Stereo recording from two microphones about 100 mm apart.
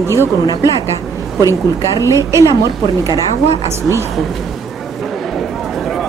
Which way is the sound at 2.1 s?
30° right (ahead or behind).